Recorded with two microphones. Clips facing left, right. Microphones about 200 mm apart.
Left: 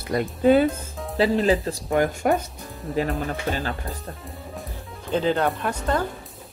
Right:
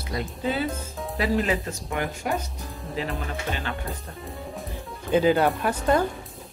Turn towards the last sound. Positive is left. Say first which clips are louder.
# right 2 dB
turn(degrees=-10)  # may be behind; listen again after turning